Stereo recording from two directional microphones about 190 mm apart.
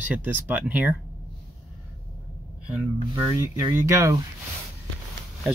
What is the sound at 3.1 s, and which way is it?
Speech, 15° right (ahead or behind).